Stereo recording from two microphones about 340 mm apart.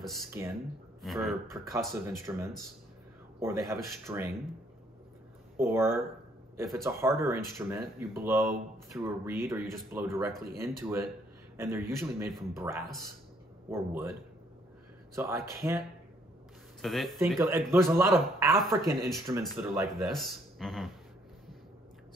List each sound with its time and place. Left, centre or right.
0.0 s speech: centre
5.6 s speech: centre
15.1 s speech: centre
16.8 s speech: centre